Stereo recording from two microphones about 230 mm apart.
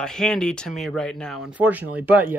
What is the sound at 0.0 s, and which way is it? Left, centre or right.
Speech, centre.